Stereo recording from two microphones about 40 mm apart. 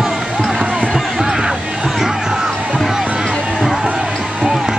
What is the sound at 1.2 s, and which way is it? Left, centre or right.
Music, centre.